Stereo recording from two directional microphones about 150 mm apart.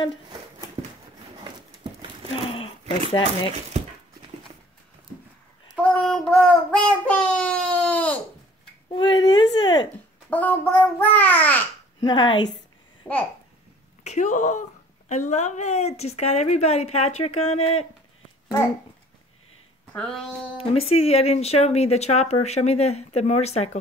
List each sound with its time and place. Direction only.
0.8 s a sound: 25° right (ahead or behind)
2.4 s a sound: 40° left (ahead or behind)
5.8 s child singing: 10° left (ahead or behind)
8.9 s a sound: 30° left (ahead or behind)
10.3 s a child's voice: 10° left (ahead or behind)
12.0 s speech: 30° left (ahead or behind)
13.0 s a child's voice: 10° left (ahead or behind)
14.0 s speech: 55° left (ahead or behind)
19.9 s a child's voice: 5° left (ahead or behind)
20.5 s speech: 40° left (ahead or behind)